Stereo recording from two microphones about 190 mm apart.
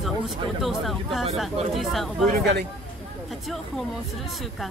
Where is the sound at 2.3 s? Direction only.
60° right (ahead or behind).